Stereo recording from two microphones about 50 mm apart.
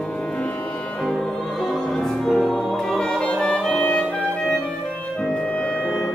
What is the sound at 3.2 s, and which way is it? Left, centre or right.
Music, left.